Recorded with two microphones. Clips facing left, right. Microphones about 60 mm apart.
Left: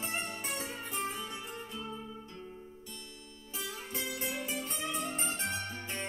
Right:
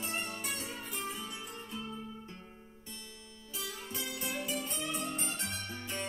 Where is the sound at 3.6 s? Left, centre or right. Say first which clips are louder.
Left 2 dB; left.